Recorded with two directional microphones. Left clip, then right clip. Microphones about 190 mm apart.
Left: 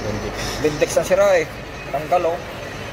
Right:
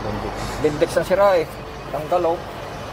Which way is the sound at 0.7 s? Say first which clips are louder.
Left 1 dB; 30° right (ahead or behind).